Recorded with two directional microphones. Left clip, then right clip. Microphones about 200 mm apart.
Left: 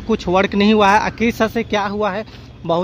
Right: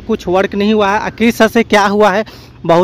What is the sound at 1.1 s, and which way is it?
Speech, 25° right (ahead or behind).